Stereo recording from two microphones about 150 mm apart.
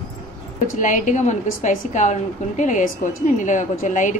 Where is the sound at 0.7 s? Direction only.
60° left (ahead or behind).